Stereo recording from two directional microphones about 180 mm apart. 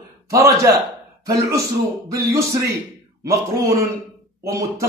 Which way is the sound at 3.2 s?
15° right (ahead or behind).